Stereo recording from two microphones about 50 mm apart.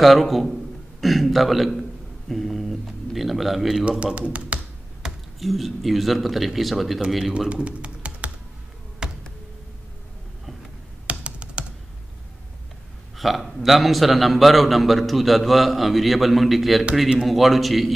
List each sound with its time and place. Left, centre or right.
0.0 s a man's voice: centre
4.5 s computer keyboard: right
5.0 s a sound: centre
5.4 s a man's voice: centre
7.4 s typing: right
9.0 s a sound: centre
11.1 s computer keyboard: right
13.2 s a man's voice: centre